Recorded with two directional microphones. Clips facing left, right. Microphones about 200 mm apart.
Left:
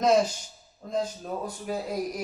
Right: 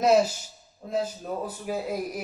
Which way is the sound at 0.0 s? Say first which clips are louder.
Right 1 dB; 5° right (ahead or behind).